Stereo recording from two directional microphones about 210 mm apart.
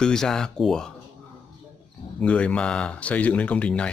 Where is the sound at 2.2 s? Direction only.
5° left (ahead or behind).